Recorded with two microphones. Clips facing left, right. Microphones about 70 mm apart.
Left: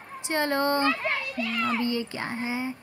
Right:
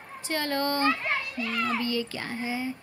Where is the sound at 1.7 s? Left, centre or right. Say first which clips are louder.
Left 1 dB; left.